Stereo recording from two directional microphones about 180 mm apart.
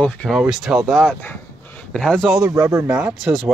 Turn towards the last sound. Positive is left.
turn(degrees=-5)  # may be behind; listen again after turning